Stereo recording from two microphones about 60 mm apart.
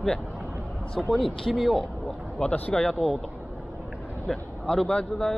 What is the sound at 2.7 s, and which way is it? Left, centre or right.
Speech, centre.